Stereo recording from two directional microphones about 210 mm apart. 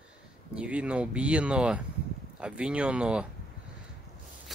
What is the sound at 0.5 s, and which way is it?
Speech, 5° right (ahead or behind).